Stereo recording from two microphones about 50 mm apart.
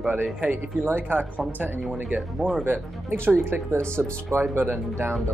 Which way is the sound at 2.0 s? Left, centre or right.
Centre.